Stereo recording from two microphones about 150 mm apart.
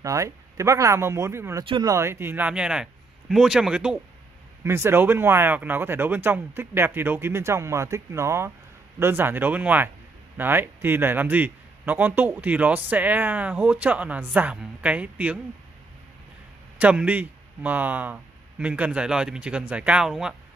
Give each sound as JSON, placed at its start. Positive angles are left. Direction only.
{"t": 0.0, "sound": "speech", "side_deg": -20}
{"t": 1.6, "sound": "speech", "side_deg": -30}
{"t": 2.0, "sound": "speech", "side_deg": -15}
{"t": 16.7, "sound": "a man's voice", "side_deg": -10}